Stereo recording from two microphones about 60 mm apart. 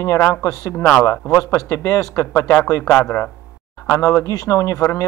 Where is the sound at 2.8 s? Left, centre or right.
Left.